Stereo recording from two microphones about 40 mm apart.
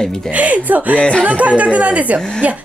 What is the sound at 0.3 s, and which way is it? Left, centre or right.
Speech, right.